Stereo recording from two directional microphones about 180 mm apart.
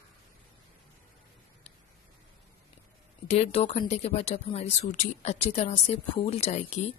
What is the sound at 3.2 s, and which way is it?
A woman's voice, 35° left (ahead or behind).